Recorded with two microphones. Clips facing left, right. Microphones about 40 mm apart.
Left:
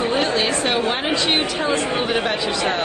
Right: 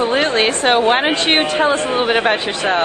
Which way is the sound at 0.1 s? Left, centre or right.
Right.